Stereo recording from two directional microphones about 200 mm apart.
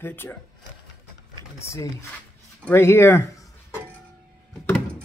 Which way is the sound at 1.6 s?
15° left (ahead or behind).